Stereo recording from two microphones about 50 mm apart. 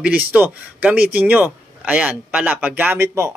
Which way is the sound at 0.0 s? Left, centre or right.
Right.